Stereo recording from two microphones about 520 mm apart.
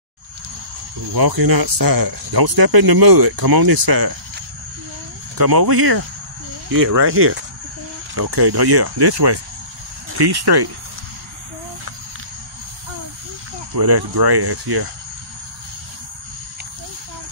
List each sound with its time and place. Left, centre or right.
1.1 s speech: right
5.4 s speech: right
7.1 s speech: right
8.3 s speech: right
13.7 s speech: right